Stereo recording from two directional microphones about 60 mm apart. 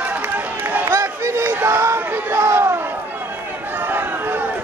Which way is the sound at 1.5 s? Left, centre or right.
Right.